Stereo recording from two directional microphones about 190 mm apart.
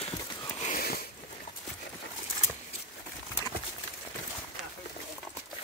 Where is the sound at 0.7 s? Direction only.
55° left (ahead or behind).